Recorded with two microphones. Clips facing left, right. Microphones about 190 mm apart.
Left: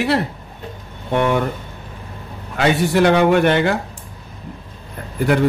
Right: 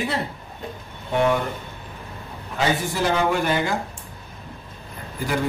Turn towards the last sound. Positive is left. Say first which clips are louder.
# left 10 dB
turn(degrees=60)  # may be behind; listen again after turning